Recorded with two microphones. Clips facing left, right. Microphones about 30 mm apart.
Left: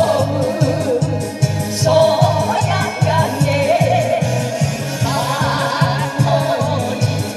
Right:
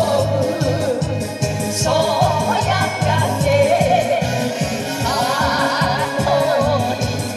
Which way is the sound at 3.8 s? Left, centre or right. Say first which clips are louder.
Even; centre.